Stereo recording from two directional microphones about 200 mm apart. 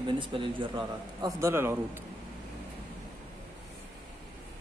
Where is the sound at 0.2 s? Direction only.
25° right (ahead or behind).